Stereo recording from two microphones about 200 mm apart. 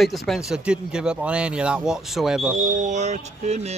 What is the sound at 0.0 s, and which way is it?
Speech, centre (ahead or behind).